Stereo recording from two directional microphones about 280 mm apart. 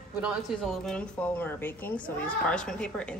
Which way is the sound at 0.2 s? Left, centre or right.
Centre.